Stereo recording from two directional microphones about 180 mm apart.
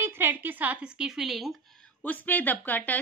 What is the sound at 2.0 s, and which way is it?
A woman's voice, 10° left (ahead or behind).